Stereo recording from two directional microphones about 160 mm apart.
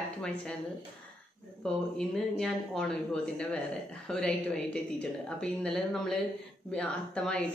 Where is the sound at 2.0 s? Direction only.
5° left (ahead or behind).